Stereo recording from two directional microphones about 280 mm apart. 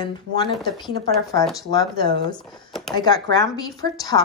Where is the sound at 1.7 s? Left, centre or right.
Centre.